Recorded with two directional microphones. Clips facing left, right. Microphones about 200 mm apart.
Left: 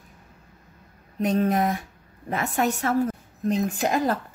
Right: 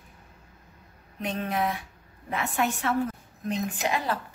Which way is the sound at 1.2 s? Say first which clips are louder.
Left 7 dB; 45° left (ahead or behind).